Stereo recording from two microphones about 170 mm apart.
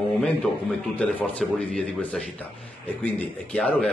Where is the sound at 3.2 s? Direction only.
5° left (ahead or behind).